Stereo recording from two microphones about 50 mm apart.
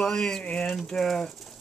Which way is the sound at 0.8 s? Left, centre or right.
Centre.